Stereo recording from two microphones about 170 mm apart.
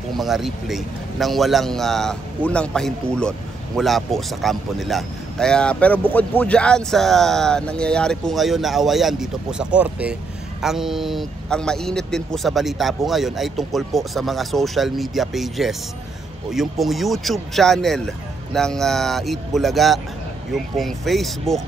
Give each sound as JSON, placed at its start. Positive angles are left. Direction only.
{"t": 0.1, "sound": "a man's voice", "side_deg": 0}